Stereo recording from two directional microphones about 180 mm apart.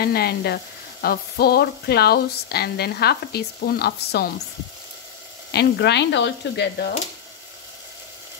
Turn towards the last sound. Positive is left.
turn(degrees=70)  # may be behind; listen again after turning